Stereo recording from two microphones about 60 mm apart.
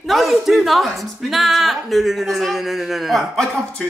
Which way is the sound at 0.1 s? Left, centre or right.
Centre.